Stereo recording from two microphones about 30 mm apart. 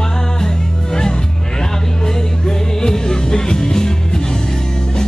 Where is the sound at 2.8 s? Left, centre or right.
Left.